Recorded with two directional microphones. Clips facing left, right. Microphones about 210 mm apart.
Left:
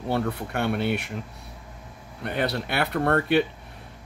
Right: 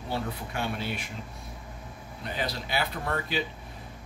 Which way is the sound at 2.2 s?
60° left (ahead or behind).